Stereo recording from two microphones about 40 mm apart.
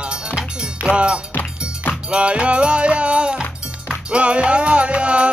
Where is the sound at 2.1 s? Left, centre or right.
Right.